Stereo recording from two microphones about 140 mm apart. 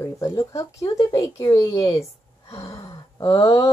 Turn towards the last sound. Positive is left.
turn(degrees=25)  # may be behind; listen again after turning